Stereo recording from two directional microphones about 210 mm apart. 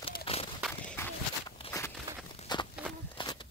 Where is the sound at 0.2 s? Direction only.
30° left (ahead or behind).